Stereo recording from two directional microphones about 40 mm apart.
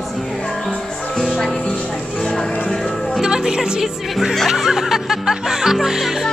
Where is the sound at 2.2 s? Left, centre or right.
Centre.